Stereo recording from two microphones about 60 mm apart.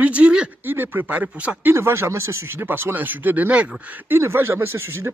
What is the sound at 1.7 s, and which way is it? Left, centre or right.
Speech, right.